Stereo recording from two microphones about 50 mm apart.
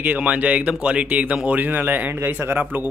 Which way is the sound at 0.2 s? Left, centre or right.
Right.